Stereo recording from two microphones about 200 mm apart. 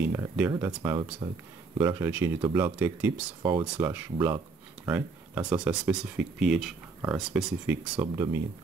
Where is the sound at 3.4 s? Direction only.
25° right (ahead or behind).